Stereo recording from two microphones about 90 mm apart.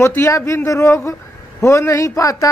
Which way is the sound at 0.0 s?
30° left (ahead or behind).